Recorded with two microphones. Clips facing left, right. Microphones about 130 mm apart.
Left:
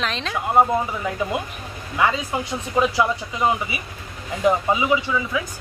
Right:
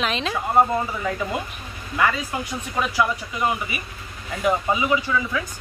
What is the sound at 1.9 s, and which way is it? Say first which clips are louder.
Speech: left 1 dB; 20° left (ahead or behind).